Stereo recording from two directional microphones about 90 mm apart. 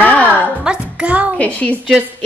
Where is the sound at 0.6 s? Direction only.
15° right (ahead or behind).